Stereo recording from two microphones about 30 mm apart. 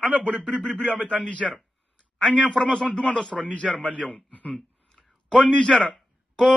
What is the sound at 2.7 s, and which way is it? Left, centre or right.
A man's voice, left.